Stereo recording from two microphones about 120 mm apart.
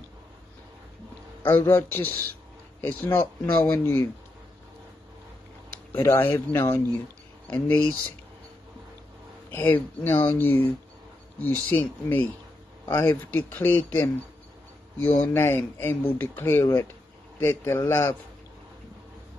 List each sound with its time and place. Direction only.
1.4 s speech: 20° left (ahead or behind)
5.9 s speech: 20° left (ahead or behind)
9.5 s speech: 15° left (ahead or behind)